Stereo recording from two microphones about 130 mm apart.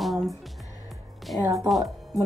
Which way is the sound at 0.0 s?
Centre (ahead or behind).